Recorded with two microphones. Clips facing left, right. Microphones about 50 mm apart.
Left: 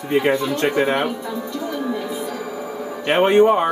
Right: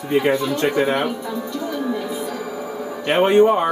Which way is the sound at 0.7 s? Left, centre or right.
Left.